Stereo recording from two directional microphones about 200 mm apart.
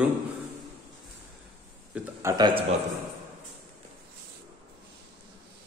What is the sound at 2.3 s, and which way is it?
Speech, 20° right (ahead or behind).